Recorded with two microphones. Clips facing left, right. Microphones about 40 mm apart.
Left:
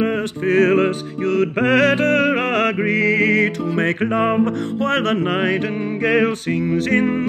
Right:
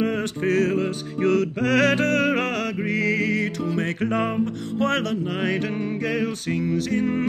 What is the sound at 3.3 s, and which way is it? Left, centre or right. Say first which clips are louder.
Music: left 7 dB; left.